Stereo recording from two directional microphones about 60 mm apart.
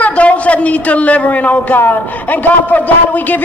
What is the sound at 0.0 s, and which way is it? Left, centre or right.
A man's voice, left.